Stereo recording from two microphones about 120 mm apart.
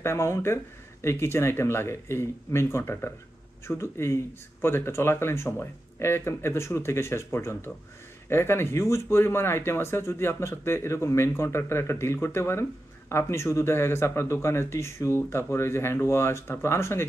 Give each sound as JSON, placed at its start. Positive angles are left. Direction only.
{"t": 0.0, "sound": "speech", "side_deg": 20}